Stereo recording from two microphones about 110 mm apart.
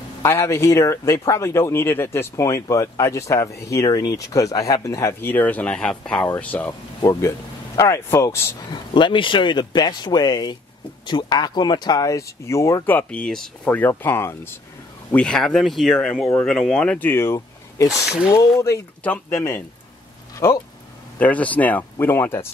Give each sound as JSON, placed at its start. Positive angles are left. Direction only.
{"t": 0.2, "sound": "speech", "side_deg": 25}
{"t": 6.2, "sound": "speech", "side_deg": 15}
{"t": 7.1, "sound": "speech", "side_deg": 25}
{"t": 8.6, "sound": "speech", "side_deg": 45}
{"t": 12.9, "sound": "speech", "side_deg": 10}
{"t": 13.7, "sound": "speech", "side_deg": 15}
{"t": 15.0, "sound": "speech", "side_deg": 10}
{"t": 17.1, "sound": "a sound", "side_deg": 20}
{"t": 17.8, "sound": "speech", "side_deg": -5}
{"t": 19.0, "sound": "speech", "side_deg": 25}
{"t": 21.2, "sound": "speech", "side_deg": 15}